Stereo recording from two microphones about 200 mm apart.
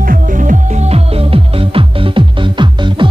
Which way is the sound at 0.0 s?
45° right (ahead or behind).